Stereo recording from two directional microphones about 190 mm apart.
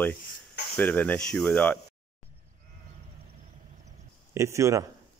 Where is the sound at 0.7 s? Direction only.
10° left (ahead or behind).